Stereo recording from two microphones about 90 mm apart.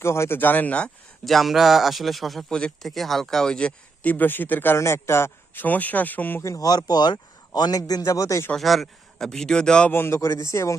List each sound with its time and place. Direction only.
0.0 s speech: 30° left (ahead or behind); by 0.9 s 15° left (ahead or behind)
1.2 s a man's voice: centre (ahead or behind); by 6.4 s 20° left (ahead or behind)
6.4 s a man's voice: 40° left (ahead or behind)
6.9 s a man's voice: 50° left (ahead or behind); by 8.5 s 35° left (ahead or behind)
8.5 s speech: centre (ahead or behind)
9.9 s a man's voice: 30° left (ahead or behind)